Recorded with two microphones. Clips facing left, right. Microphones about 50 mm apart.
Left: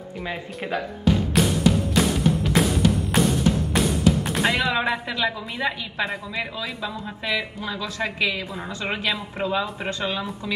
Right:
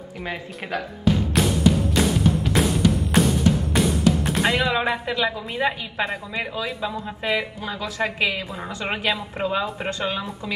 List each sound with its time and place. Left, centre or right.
2.5 s music: centre
5.6 s a man's voice: right
6.8 s speech: right
9.0 s speech: centre
9.5 s a man's voice: right